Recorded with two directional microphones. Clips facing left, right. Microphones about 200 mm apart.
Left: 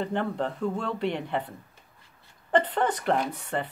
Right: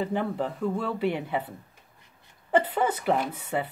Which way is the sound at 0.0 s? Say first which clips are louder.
Even; 5° right (ahead or behind).